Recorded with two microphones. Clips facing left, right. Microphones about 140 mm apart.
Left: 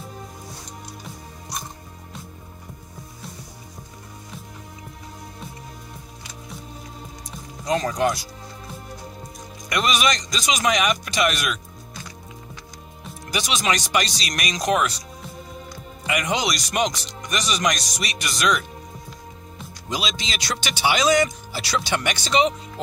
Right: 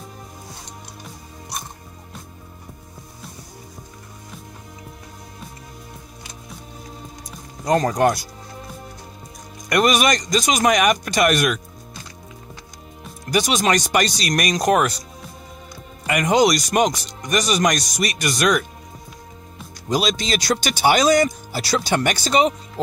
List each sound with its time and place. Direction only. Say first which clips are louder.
7.6 s speech: right 4 dB; 50° right (ahead or behind)
9.7 s speech: right 5 dB; 50° right (ahead or behind)
13.3 s speech: right 5 dB; 45° right (ahead or behind)
16.1 s speech: right 7 dB; 45° right (ahead or behind)
19.9 s speech: right 8 dB; 45° right (ahead or behind)